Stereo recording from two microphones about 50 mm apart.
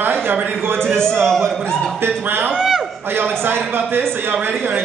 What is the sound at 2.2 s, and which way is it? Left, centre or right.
Speech, right.